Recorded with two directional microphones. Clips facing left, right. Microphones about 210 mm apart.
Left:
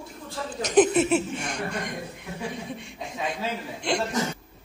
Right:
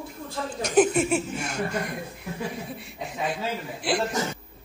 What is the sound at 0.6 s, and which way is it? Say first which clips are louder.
A woman's voice: left 1 dB; 10° right (ahead or behind).